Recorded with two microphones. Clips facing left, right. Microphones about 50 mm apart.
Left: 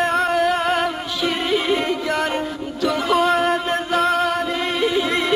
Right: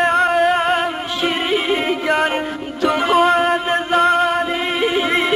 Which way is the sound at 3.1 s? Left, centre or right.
Centre.